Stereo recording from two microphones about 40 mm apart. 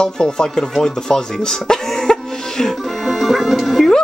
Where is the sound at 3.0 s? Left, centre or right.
Centre.